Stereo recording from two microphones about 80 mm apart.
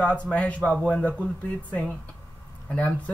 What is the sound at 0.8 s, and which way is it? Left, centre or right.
Speech, centre.